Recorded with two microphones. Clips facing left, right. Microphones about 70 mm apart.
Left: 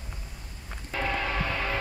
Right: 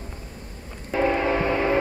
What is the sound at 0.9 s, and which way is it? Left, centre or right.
Music, right.